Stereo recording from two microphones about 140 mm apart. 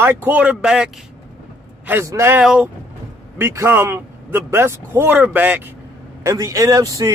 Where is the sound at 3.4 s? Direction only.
20° right (ahead or behind).